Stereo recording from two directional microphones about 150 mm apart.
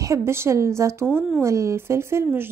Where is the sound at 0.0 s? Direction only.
20° right (ahead or behind).